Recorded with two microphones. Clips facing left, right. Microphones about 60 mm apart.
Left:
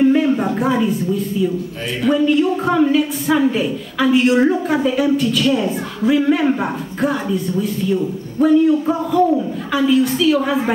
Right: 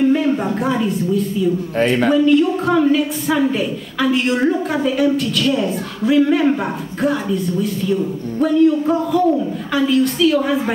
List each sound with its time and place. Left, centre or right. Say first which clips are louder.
0.0 s a sound: left 1 dB; centre
1.8 s speech: right 9 dB; right
2.1 s a woman's voice: left 1 dB; centre